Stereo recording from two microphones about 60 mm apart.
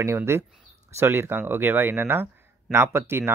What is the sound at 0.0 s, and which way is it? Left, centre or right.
Speech, right.